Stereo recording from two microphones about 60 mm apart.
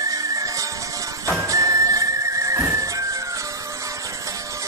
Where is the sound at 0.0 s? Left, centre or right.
Right.